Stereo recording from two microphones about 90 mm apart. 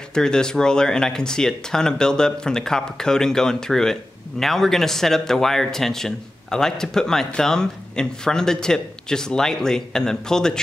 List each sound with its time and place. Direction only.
0.1 s speech: 10° left (ahead or behind)